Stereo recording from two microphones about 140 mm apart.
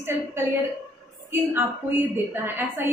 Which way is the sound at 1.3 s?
20° right (ahead or behind).